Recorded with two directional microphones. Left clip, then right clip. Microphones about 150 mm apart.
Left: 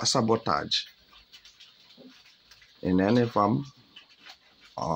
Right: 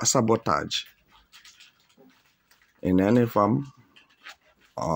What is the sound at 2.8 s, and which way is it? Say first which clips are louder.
Speech: right 2 dB; 35° right (ahead or behind).